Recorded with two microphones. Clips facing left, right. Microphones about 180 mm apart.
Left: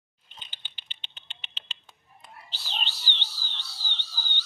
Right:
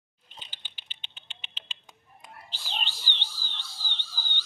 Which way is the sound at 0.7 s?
10° right (ahead or behind).